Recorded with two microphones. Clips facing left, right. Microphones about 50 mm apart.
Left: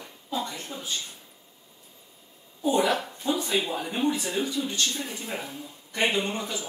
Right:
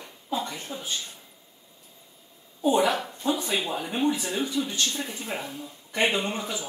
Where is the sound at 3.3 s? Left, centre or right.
Right.